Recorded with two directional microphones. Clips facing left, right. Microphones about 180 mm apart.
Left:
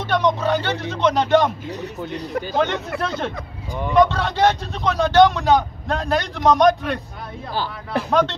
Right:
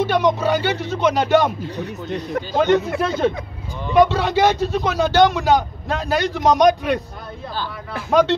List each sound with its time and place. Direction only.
0.0 s a man's voice: 5° right (ahead or behind)
2.5 s a man's voice: centre (ahead or behind)
8.1 s a man's voice: 5° right (ahead or behind)